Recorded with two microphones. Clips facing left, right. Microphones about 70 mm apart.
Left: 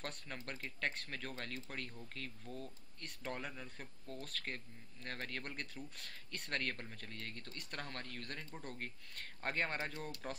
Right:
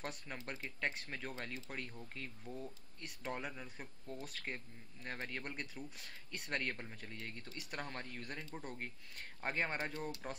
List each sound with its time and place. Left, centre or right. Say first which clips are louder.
0.0 s speech: right 1 dB; centre